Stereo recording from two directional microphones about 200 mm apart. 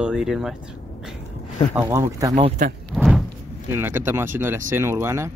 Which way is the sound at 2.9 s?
Centre (ahead or behind).